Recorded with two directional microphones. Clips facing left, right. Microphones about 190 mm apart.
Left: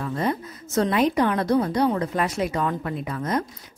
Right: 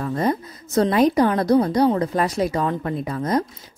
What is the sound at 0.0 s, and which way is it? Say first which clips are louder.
A woman's voice: right 3 dB; 40° right (ahead or behind).